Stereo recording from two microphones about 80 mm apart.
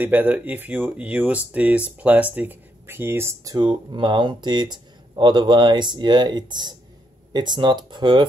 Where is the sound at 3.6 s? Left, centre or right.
Right.